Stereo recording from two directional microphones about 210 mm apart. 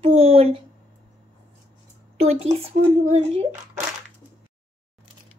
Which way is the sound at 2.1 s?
30° right (ahead or behind).